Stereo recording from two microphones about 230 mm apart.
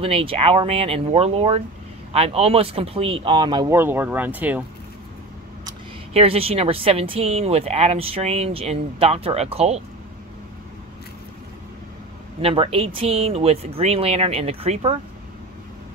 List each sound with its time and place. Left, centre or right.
0.0 s speech: right; by 4.6 s centre
5.7 s speech: right
12.4 s speech: right